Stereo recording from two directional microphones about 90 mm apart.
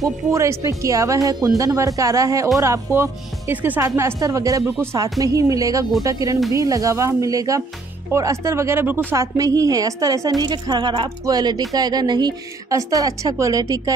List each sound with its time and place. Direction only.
0.0 s speech: 35° right (ahead or behind)
3.8 s speech: 35° right (ahead or behind)
9.1 s speech: 35° right (ahead or behind)
10.4 s a woman's voice: 50° right (ahead or behind)